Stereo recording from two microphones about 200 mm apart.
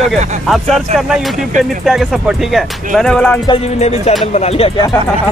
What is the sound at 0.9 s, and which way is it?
Speech, centre (ahead or behind).